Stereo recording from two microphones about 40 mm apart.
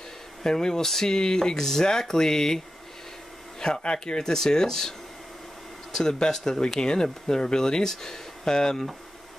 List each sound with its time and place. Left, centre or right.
0.4 s speech: centre
5.9 s speech: centre